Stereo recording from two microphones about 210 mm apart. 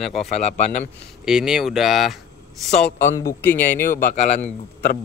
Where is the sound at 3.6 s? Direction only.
40° left (ahead or behind).